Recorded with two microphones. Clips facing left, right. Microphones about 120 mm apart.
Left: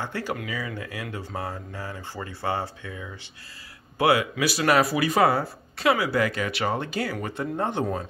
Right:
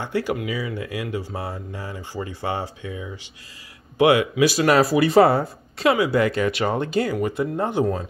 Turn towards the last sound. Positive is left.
turn(degrees=-10)  # may be behind; listen again after turning